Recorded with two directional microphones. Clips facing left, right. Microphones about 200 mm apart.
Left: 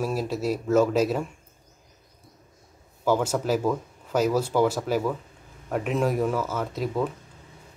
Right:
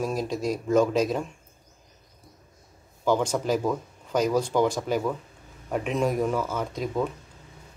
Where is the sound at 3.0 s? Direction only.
5° left (ahead or behind).